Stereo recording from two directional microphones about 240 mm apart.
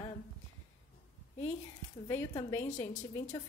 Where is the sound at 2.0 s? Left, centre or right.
Centre.